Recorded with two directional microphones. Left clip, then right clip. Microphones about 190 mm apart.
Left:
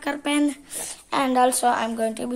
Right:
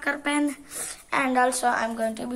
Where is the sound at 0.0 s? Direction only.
20° left (ahead or behind).